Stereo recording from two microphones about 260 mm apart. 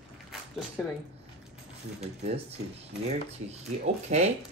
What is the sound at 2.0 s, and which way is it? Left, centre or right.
Speech, right.